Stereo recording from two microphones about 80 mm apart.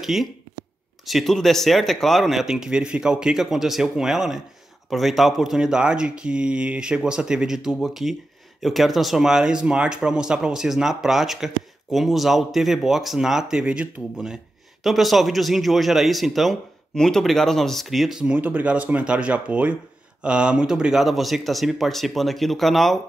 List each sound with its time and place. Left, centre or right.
0.0 s speech: centre
18.4 s speech: centre